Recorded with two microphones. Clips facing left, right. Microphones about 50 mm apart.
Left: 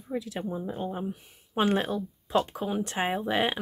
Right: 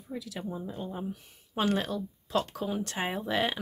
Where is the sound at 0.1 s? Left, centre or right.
Left.